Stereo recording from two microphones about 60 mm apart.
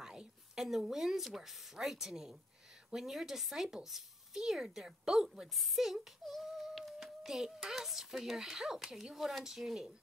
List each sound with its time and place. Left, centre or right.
0.0 s speech: centre